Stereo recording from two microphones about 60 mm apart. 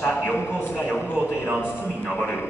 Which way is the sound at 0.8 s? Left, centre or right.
Centre.